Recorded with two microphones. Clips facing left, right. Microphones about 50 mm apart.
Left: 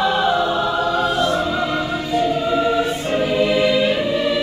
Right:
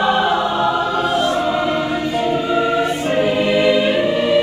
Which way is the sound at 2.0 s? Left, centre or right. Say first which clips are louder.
Right 1 dB; right.